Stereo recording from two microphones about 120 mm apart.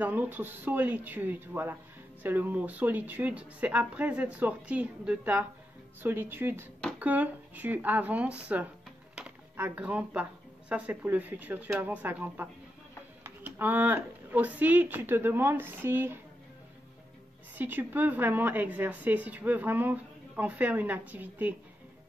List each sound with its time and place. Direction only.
0.0 s a woman's voice: 15° right (ahead or behind)
9.1 s music: 10° right (ahead or behind)
9.7 s a woman's voice: 10° right (ahead or behind)
17.6 s a woman's voice: 15° right (ahead or behind)